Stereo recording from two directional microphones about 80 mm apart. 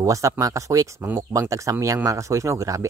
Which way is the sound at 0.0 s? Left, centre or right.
Right.